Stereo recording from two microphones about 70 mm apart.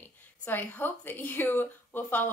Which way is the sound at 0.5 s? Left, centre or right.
Left.